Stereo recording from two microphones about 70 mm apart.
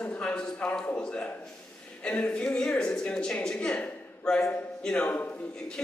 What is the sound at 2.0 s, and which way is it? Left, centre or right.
A man's voice, centre.